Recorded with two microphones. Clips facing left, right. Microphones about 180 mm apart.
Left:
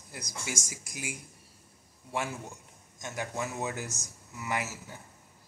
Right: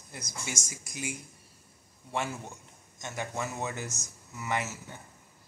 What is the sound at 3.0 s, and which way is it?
Speech, 10° left (ahead or behind).